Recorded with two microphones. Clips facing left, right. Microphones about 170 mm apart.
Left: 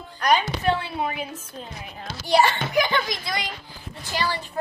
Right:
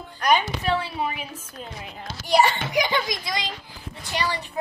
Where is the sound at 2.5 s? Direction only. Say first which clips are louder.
Left 1 dB; 20° right (ahead or behind).